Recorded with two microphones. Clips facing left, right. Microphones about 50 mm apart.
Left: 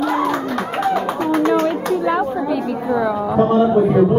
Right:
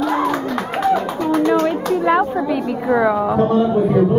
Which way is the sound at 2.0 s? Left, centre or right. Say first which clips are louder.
Right 2 dB; right.